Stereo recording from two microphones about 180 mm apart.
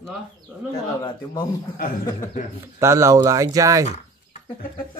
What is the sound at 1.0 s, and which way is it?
Speech, 25° left (ahead or behind).